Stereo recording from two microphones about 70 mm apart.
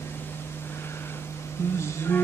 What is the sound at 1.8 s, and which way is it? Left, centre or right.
Music, left.